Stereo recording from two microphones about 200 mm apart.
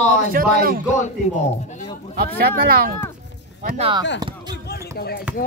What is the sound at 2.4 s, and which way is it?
Speech, 45° right (ahead or behind).